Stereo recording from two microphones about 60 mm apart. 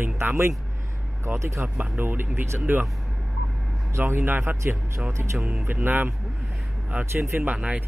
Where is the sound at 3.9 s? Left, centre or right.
Right.